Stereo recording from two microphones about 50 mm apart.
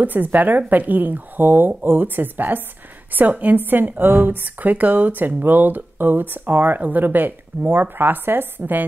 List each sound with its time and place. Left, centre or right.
0.0 s a woman's voice: right